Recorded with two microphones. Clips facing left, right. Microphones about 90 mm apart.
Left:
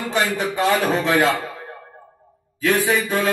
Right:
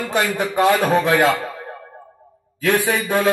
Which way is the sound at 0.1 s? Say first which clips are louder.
Right 1 dB; 45° right (ahead or behind).